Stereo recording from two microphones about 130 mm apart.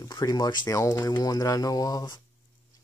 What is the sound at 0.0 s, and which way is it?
Speech, 30° left (ahead or behind).